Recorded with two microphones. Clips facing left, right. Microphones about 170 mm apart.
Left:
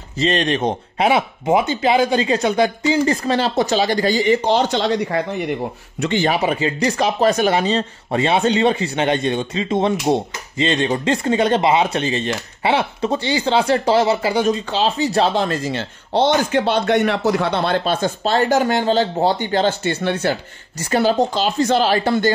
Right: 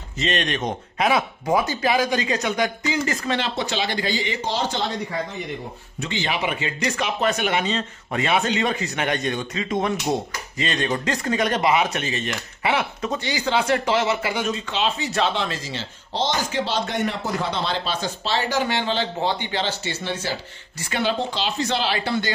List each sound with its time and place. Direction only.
0.2 s speech: 30° left (ahead or behind); by 5.5 s 75° left (ahead or behind)
5.9 s speech: 60° left (ahead or behind)
6.2 s speech: 40° left (ahead or behind); by 20.3 s 60° left (ahead or behind)
20.9 s speech: 40° left (ahead or behind)